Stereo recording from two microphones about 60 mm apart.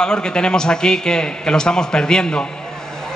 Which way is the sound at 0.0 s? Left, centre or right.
Centre.